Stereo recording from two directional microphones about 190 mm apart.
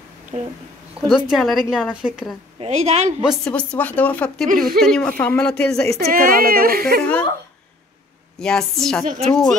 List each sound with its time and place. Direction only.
0.3 s a woman's voice: 35° right (ahead or behind)
1.3 s speech: centre (ahead or behind)
2.6 s a woman's voice: 35° right (ahead or behind)
3.3 s speech: 5° left (ahead or behind)
5.9 s speech: 50° right (ahead or behind)
8.4 s speech: 5° left (ahead or behind)
9.0 s speech: 45° right (ahead or behind)
9.3 s speech: centre (ahead or behind)